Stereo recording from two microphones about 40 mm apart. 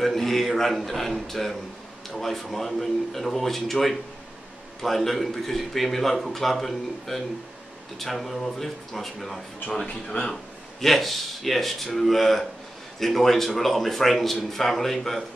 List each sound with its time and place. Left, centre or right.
0.0 s a man's voice: centre
10.0 s speech: left
10.8 s a man's voice: centre